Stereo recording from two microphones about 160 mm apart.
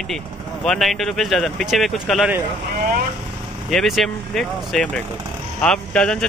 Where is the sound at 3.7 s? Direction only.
Centre (ahead or behind).